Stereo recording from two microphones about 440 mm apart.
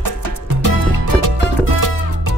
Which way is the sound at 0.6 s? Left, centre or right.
Right.